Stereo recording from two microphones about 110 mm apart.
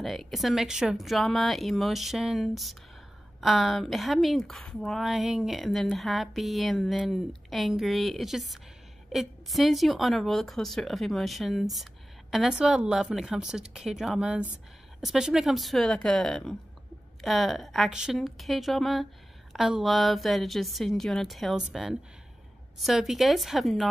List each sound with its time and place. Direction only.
0.0 s speech: centre (ahead or behind)
22.8 s speech: centre (ahead or behind)